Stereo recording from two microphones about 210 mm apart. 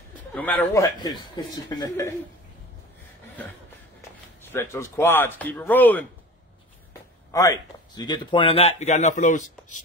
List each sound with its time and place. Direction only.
0.3 s speech: 10° left (ahead or behind)
4.4 s speech: 10° left (ahead or behind); by 9.8 s 35° left (ahead or behind)